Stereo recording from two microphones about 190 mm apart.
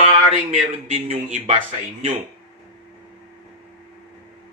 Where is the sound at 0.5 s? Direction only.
35° right (ahead or behind).